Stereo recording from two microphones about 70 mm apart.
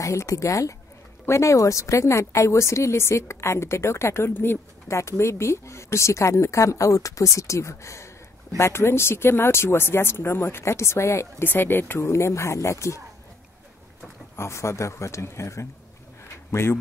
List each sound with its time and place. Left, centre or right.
0.0 s speech: left
11.4 s speech: left
12.0 s speech: left
14.3 s speech: left